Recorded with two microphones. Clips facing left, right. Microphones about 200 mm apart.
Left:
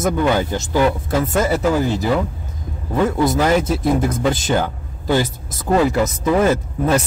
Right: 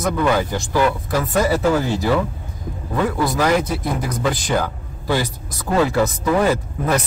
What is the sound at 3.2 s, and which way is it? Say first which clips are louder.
Speech: left 1 dB; 25° left (ahead or behind).